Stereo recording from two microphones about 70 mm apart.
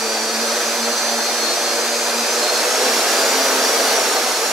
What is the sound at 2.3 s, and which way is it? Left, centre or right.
Vacuum cleaner, centre.